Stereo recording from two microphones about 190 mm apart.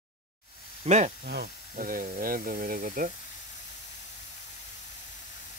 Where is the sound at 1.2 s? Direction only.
60° right (ahead or behind).